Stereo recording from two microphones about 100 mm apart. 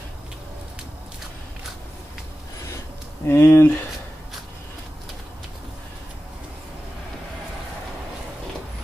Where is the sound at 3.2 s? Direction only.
25° left (ahead or behind).